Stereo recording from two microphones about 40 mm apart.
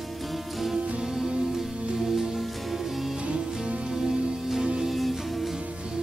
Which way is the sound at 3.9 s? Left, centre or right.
Centre.